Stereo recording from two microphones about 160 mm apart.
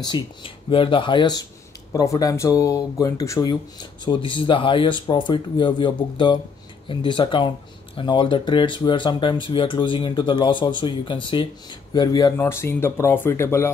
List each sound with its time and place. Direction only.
0.0 s speech: 30° left (ahead or behind)